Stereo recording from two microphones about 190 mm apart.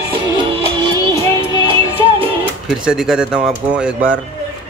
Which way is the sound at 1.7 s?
25° right (ahead or behind).